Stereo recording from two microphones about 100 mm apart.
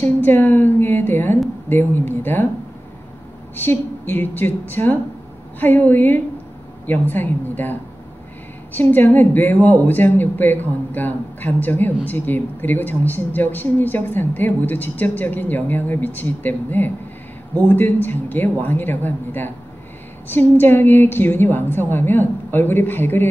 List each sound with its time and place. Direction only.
0.0 s speech: 20° left (ahead or behind)
3.5 s speech: 20° left (ahead or behind)
8.7 s speech: 20° left (ahead or behind)